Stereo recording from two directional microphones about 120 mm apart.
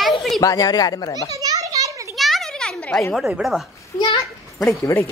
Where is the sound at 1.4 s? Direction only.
30° right (ahead or behind).